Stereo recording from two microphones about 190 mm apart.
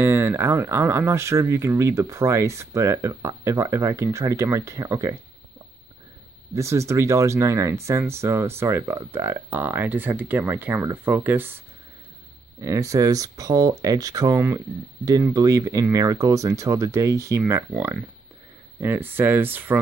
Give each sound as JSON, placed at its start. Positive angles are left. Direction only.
{"t": 0.0, "sound": "speech", "side_deg": -10}
{"t": 6.5, "sound": "speech", "side_deg": -15}
{"t": 12.5, "sound": "speech", "side_deg": -15}